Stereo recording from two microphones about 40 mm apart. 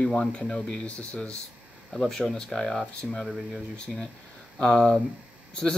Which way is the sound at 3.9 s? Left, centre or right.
Centre.